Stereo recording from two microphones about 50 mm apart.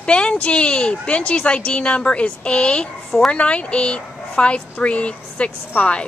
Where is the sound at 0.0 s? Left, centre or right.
Left.